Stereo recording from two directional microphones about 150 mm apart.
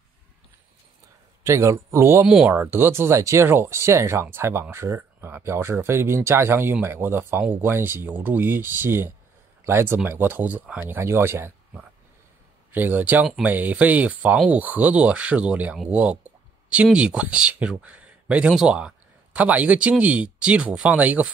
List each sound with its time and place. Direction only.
1.4 s a man's voice: 20° right (ahead or behind)